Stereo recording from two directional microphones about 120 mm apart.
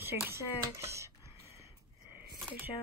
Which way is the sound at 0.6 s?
25° right (ahead or behind).